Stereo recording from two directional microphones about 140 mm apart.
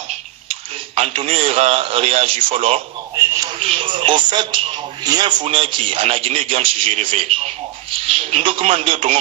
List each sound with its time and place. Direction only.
0.5 s speech: 45° right (ahead or behind)
8.3 s speech: 40° right (ahead or behind)